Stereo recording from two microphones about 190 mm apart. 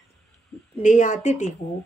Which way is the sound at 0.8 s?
40° left (ahead or behind).